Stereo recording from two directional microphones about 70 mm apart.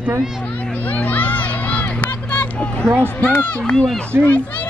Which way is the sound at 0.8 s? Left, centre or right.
Left.